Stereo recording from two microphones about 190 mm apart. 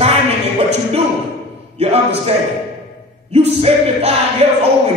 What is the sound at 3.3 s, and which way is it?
Speech, 35° right (ahead or behind).